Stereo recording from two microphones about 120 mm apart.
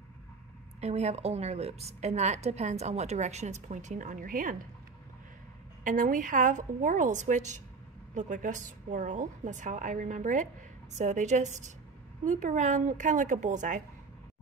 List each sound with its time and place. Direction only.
0.7 s a woman's voice: 65° right (ahead or behind); by 4.2 s 90° right
5.9 s a woman's voice: 90° right